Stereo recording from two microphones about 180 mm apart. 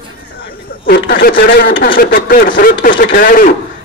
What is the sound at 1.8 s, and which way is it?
Speech, 50° left (ahead or behind).